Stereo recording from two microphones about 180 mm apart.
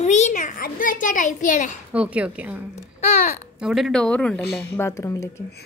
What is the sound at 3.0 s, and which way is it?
Speech, 40° left (ahead or behind).